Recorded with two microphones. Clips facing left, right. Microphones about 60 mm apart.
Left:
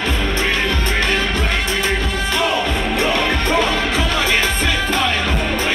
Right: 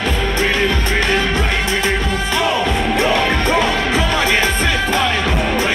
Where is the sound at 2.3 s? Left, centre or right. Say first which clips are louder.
Right 2 dB; right.